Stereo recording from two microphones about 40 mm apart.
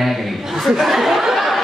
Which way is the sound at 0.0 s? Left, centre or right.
Centre.